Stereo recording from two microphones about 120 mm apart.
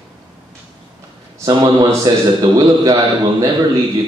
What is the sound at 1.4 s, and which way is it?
Speech, 35° right (ahead or behind).